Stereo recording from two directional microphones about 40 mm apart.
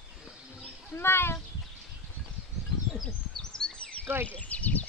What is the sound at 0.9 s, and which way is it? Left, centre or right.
Speech, left.